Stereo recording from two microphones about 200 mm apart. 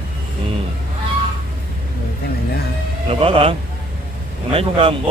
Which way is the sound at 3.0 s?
30° right (ahead or behind).